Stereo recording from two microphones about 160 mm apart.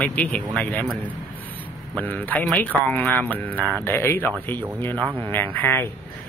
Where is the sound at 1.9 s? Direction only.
10° left (ahead or behind).